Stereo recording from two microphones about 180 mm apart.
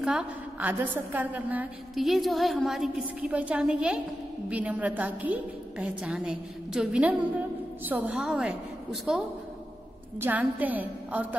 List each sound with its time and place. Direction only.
0.0 s a woman's voice: 5° right (ahead or behind)